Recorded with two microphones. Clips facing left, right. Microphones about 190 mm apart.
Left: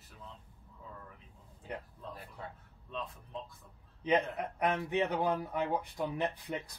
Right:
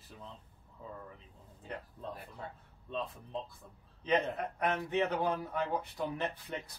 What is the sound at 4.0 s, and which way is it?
Speech, 15° left (ahead or behind).